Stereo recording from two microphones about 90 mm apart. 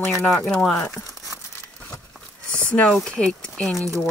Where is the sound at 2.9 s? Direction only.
5° left (ahead or behind).